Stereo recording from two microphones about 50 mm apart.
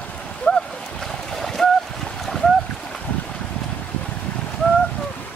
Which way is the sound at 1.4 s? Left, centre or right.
Centre.